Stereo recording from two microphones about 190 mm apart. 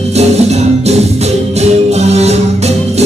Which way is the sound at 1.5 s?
35° right (ahead or behind).